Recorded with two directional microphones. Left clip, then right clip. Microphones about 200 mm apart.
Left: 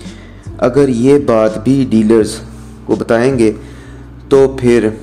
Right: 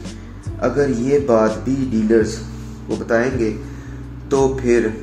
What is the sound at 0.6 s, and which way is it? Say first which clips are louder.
Speech: left 7 dB; 50° left (ahead or behind).